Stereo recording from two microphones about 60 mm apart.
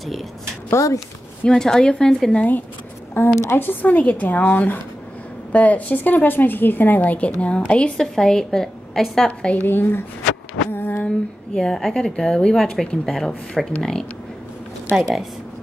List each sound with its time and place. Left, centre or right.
0.7 s speech: left
1.5 s a woman's voice: centre
2.3 s a woman's voice: left
3.3 s speech: left
3.6 s a woman's voice: left
8.0 s a woman's voice: centre
9.6 s speech: left
10.7 s a sound: left
11.1 s a woman's voice: centre
15.0 s speech: centre